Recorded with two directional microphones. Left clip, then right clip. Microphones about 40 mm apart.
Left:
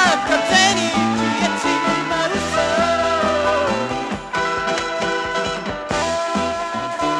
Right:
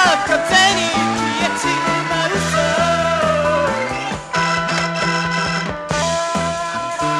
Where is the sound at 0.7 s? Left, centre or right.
Right.